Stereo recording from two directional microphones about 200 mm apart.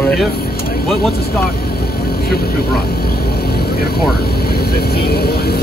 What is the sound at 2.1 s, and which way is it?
Vehicle, 50° left (ahead or behind).